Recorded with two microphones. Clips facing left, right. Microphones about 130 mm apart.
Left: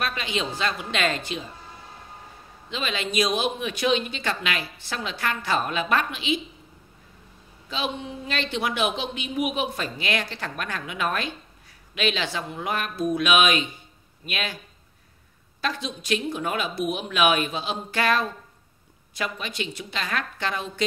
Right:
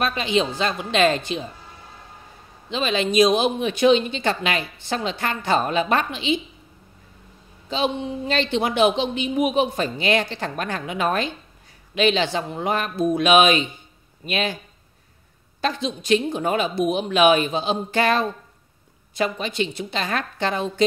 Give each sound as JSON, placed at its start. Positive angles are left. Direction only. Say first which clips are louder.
{"t": 0.0, "sound": "a man's voice", "louder": "right 7 dB", "side_deg": -25}
{"t": 2.7, "sound": "a man's voice", "louder": "right 7 dB", "side_deg": -30}
{"t": 7.7, "sound": "a man's voice", "louder": "right 6 dB", "side_deg": -30}
{"t": 15.6, "sound": "a man's voice", "louder": "right 5 dB", "side_deg": -25}